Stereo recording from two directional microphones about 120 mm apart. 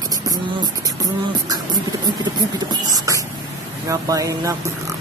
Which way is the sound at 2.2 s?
35° right (ahead or behind).